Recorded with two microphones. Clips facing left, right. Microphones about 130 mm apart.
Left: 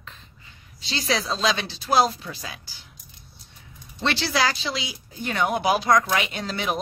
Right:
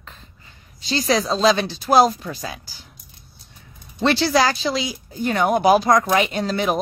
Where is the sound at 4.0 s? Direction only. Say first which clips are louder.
Right 6 dB; 40° right (ahead or behind).